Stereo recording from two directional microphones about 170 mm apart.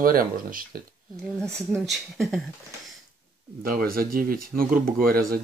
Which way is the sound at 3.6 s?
60° right (ahead or behind).